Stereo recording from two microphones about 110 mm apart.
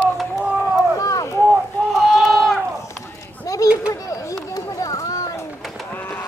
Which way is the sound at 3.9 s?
30° left (ahead or behind).